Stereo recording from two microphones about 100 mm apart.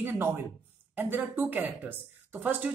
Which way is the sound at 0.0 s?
20° right (ahead or behind).